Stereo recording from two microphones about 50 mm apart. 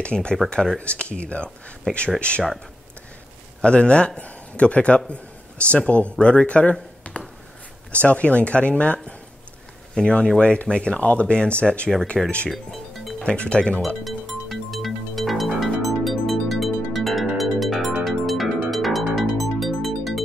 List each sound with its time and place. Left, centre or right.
0.0 s speech: centre
3.6 s a man's voice: centre
12.1 s speech: centre
12.4 s music: centre
13.2 s speech: left
13.8 s music: centre